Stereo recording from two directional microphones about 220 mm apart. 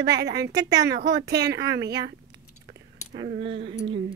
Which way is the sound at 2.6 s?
50° right (ahead or behind).